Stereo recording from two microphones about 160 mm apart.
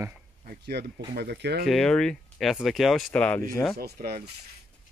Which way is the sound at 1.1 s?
90° right.